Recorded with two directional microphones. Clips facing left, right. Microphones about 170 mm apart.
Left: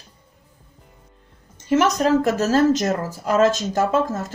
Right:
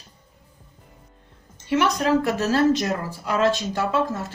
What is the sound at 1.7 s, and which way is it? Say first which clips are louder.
A woman's voice: left 3 dB; 45° left (ahead or behind).